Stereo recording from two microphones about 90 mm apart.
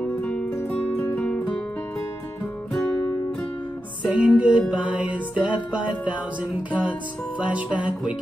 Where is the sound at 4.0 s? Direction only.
10° right (ahead or behind).